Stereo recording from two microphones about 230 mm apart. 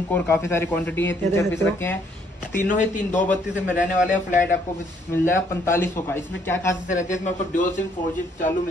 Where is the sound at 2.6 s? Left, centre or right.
Left.